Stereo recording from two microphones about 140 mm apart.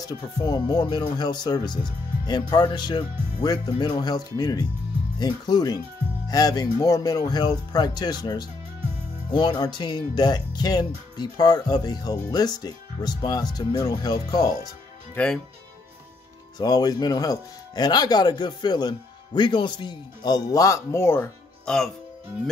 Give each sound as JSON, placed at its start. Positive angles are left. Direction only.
{"t": 0.0, "sound": "speech", "side_deg": 30}
{"t": 15.1, "sound": "speech", "side_deg": 5}
{"t": 16.5, "sound": "speech", "side_deg": 30}
{"t": 21.6, "sound": "speech", "side_deg": 5}